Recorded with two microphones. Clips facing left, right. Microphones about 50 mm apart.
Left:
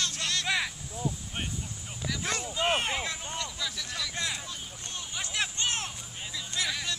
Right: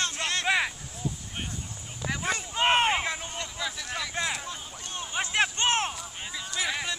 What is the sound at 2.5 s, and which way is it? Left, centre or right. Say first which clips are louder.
Vehicle: right 6 dB; right.